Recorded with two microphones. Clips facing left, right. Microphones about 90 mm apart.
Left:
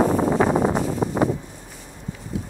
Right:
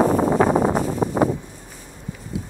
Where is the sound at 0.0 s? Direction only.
35° right (ahead or behind).